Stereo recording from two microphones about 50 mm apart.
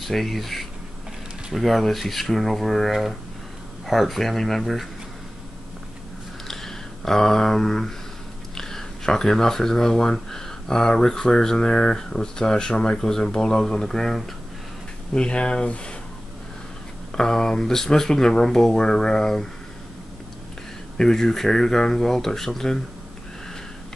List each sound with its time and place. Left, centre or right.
0.0 s speech: centre
6.4 s a sound: centre
8.5 s speech: centre
15.1 s speech: centre
17.1 s speech: centre
21.0 s speech: centre